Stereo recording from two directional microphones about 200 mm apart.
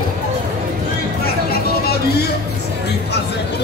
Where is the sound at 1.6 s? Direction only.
50° left (ahead or behind).